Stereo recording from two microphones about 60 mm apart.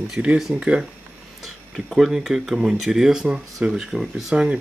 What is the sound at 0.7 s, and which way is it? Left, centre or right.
Speech, right.